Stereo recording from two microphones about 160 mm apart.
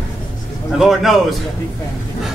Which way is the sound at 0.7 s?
Centre (ahead or behind).